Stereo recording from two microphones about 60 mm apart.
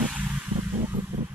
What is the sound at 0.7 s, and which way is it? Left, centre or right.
Vehicle, right.